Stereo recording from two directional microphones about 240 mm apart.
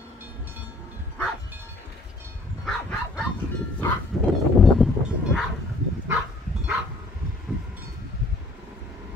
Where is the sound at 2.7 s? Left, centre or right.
Centre.